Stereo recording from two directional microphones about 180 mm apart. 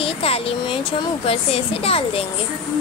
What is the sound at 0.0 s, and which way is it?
Vehicle, 30° left (ahead or behind).